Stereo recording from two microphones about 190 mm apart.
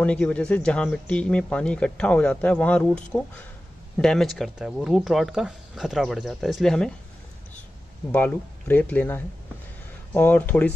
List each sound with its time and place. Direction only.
0.0 s speech: 5° left (ahead or behind)
8.1 s speech: 10° left (ahead or behind)